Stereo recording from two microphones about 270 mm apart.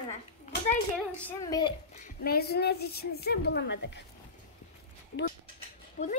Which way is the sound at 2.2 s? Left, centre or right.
Left.